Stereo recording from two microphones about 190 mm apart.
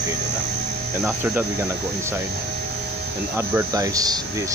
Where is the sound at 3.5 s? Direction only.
20° right (ahead or behind).